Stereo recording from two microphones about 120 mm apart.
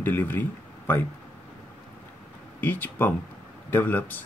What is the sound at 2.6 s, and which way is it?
Speech, 15° left (ahead or behind).